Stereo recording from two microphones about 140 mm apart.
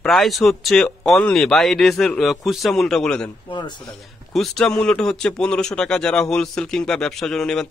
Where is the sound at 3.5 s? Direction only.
35° left (ahead or behind).